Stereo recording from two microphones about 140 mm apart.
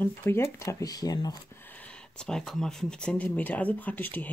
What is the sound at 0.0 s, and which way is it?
Speech, 15° left (ahead or behind).